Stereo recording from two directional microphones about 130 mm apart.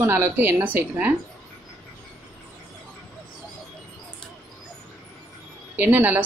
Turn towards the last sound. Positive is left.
turn(degrees=-15)  # may be behind; listen again after turning